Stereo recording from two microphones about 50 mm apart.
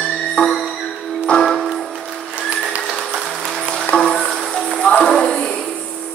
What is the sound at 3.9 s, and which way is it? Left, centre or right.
Music, centre.